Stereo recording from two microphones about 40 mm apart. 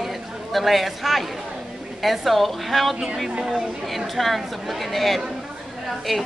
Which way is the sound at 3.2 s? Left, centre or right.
Centre.